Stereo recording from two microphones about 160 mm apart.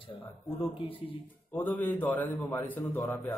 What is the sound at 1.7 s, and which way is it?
A man's voice, 10° left (ahead or behind).